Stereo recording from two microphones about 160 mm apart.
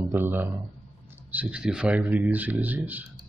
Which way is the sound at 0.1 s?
15° right (ahead or behind).